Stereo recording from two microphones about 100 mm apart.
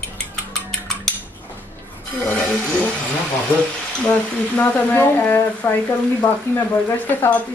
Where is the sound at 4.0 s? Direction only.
15° left (ahead or behind).